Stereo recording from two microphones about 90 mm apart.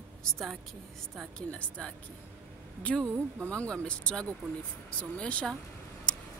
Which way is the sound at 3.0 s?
25° right (ahead or behind).